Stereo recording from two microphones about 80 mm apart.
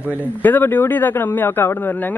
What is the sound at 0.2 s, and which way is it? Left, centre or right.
A man's voice, left.